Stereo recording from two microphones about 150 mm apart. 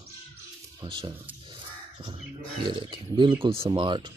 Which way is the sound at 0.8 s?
35° right (ahead or behind).